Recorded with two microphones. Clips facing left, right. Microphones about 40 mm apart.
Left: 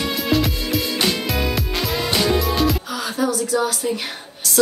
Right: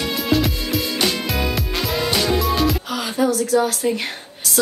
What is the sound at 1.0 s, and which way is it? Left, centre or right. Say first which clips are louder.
Music: even; centre.